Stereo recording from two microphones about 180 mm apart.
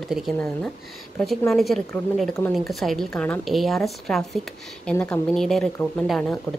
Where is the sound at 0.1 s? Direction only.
Centre (ahead or behind).